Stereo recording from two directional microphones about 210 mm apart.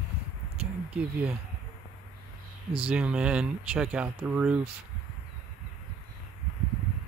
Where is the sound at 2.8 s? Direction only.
5° right (ahead or behind).